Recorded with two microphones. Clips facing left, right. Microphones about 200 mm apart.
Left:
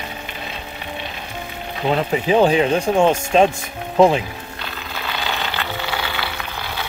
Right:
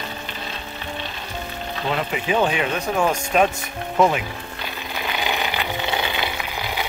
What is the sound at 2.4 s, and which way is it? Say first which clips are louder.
Speech: left 6 dB; 30° left (ahead or behind).